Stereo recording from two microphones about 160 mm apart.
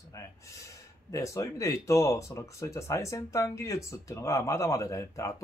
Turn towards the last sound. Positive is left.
turn(degrees=20)  # may be behind; listen again after turning